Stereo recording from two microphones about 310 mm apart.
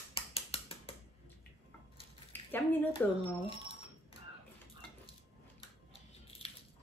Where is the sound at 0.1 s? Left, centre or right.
Centre.